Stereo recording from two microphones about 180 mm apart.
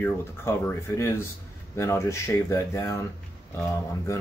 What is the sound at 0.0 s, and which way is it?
Speech, 10° left (ahead or behind).